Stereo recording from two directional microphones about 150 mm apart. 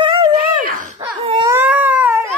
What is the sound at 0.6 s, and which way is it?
Wail, 65° right (ahead or behind).